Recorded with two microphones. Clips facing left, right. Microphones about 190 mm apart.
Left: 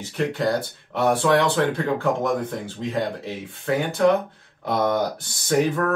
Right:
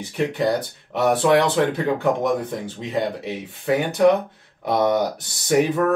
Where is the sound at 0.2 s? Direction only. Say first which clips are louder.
Right 2 dB; 20° right (ahead or behind).